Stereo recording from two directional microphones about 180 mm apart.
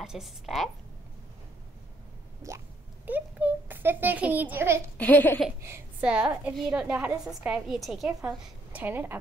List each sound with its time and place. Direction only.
0.0 s a woman's voice: centre (ahead or behind)
2.4 s a sound: 15° right (ahead or behind)
3.1 s a child's voice: 10° right (ahead or behind)
4.9 s speech: 10° left (ahead or behind)
5.6 s a woman's voice: 10° right (ahead or behind)